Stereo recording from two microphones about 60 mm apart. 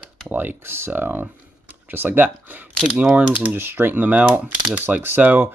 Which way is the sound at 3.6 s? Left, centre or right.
Right.